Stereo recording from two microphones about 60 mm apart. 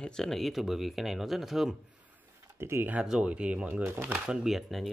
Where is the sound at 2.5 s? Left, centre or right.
Right.